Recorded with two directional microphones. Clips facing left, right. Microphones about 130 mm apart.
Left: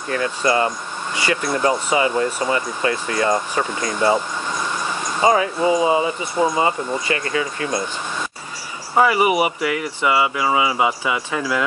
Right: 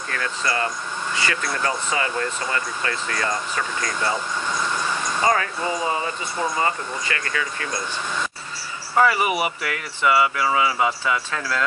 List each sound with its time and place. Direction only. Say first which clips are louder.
0.1 s speech: left 7 dB; 20° left (ahead or behind)
3.3 s speech: left 6 dB; 30° left (ahead or behind)
5.2 s speech: left 6 dB; 15° left (ahead or behind)
8.9 s speech: left 3 dB; 15° left (ahead or behind)